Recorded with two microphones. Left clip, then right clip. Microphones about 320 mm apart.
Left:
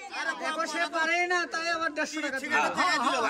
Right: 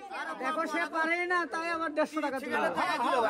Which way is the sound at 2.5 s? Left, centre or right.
Centre.